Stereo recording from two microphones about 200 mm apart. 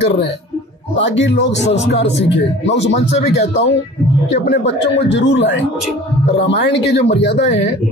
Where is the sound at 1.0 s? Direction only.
65° left (ahead or behind).